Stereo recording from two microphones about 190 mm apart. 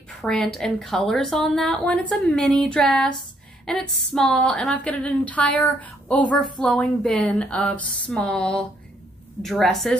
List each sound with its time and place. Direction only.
0.2 s a woman's voice: 5° left (ahead or behind)
3.6 s a sound: 5° left (ahead or behind)
6.6 s a woman's voice: centre (ahead or behind)